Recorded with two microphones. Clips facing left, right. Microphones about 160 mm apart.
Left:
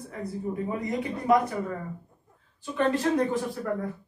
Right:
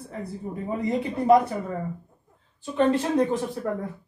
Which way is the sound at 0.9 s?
30° right (ahead or behind).